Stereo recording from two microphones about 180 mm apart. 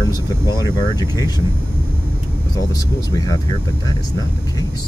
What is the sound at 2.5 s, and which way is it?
Speech, 20° left (ahead or behind).